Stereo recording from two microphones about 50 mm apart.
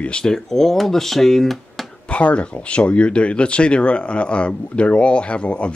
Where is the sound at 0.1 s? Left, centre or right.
Centre.